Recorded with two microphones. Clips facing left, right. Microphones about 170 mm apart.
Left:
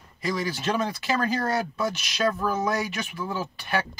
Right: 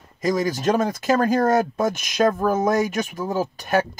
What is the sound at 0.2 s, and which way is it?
Speech, 45° right (ahead or behind).